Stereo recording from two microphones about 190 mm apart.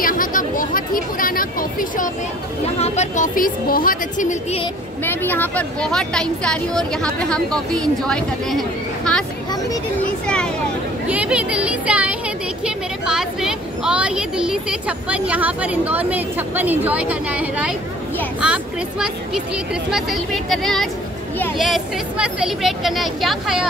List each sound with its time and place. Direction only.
0.0 s a sound: 45° left (ahead or behind)
2.8 s speech: 40° left (ahead or behind)
5.0 s speech: 10° left (ahead or behind)
10.2 s speech: 5° left (ahead or behind)
11.1 s a woman's voice: 5° right (ahead or behind)